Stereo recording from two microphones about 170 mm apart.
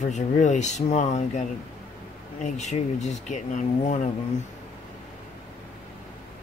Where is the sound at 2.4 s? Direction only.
45° left (ahead or behind).